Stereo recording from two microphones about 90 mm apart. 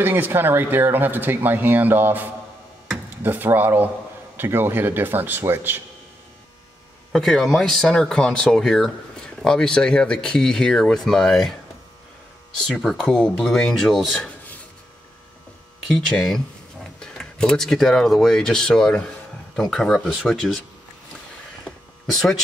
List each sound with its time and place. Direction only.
0.0 s speech: 20° right (ahead or behind)
3.3 s speech: 20° right (ahead or behind)
7.1 s speech: centre (ahead or behind)
12.6 s speech: centre (ahead or behind)
15.9 s speech: centre (ahead or behind)
22.1 s speech: centre (ahead or behind)